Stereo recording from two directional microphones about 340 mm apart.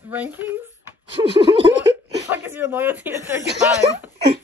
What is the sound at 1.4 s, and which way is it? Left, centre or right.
Laughter, centre.